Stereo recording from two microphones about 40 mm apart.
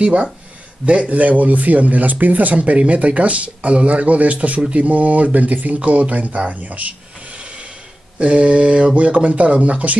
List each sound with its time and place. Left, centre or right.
0.0 s speech: right